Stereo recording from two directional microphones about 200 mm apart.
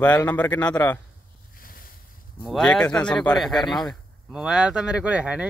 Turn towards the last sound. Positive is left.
turn(degrees=-5)  # may be behind; listen again after turning